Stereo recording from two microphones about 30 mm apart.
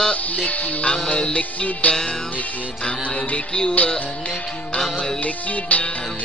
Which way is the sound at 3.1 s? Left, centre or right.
Left.